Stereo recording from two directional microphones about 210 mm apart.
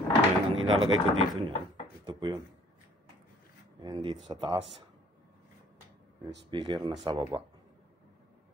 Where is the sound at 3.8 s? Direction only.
25° right (ahead or behind).